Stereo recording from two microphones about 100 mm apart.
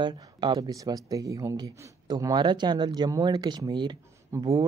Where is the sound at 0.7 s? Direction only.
35° right (ahead or behind).